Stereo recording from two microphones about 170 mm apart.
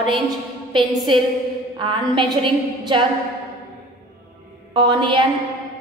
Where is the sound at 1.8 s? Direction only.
30° right (ahead or behind).